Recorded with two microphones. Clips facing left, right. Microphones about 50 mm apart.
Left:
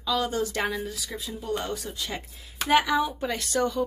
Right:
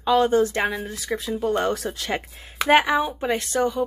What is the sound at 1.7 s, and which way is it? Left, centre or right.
Speech, right.